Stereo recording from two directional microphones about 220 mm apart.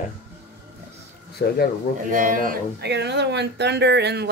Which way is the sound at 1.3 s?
45° left (ahead or behind).